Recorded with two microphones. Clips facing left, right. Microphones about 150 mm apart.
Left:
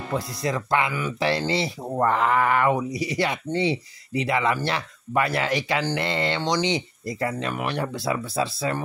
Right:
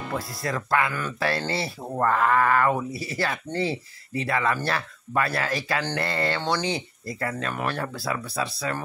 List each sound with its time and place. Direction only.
0.1 s speech: 20° left (ahead or behind)